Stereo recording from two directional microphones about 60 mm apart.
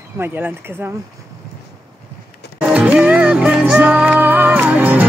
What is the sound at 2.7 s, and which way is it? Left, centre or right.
Music, right.